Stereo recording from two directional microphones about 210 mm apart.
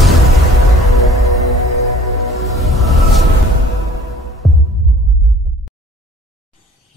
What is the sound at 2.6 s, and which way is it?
Music, centre (ahead or behind).